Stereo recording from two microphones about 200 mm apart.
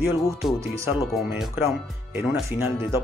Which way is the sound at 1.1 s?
Centre (ahead or behind).